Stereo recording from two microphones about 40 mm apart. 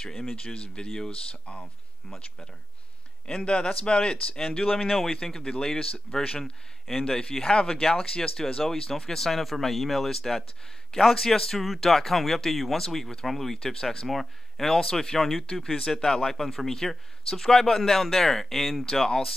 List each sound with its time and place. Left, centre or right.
0.0 s speech: centre
3.3 s speech: left
5.1 s speech: centre
14.0 s speech: centre